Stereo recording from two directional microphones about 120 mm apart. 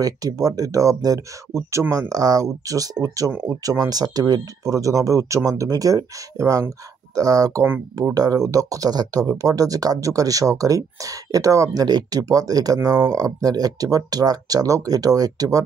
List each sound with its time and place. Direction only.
0.0 s speech: 30° right (ahead or behind)